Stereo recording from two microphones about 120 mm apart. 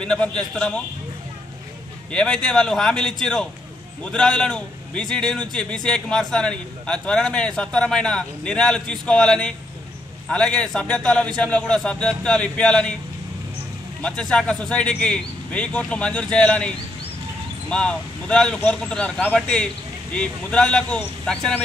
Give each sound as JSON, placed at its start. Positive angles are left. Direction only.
{"t": 0.0, "sound": "a man's voice", "side_deg": 5}
{"t": 2.1, "sound": "a man's voice", "side_deg": 5}
{"t": 14.0, "sound": "a man's voice", "side_deg": 5}